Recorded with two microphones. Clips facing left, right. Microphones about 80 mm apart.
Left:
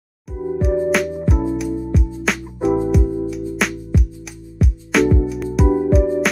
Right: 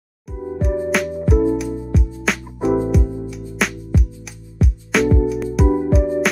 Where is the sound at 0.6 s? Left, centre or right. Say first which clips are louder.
Left 2 dB; centre.